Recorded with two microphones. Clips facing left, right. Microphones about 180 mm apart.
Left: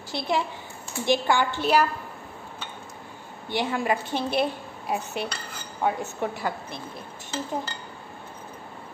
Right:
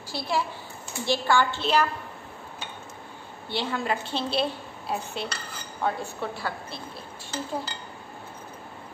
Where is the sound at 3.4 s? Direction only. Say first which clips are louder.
Left 3 dB; 15° left (ahead or behind).